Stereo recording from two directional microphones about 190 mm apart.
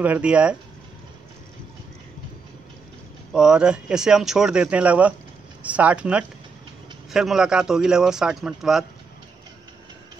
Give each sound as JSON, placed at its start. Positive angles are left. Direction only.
{"t": 0.0, "sound": "speech", "side_deg": -5}
{"t": 3.3, "sound": "speech", "side_deg": -5}